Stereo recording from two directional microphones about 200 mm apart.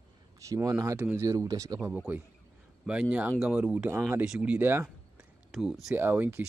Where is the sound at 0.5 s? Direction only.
15° right (ahead or behind).